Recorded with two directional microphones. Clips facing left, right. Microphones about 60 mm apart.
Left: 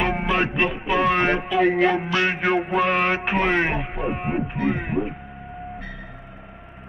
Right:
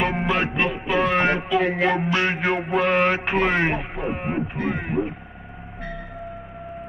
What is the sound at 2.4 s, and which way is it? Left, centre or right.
A man's voice, centre.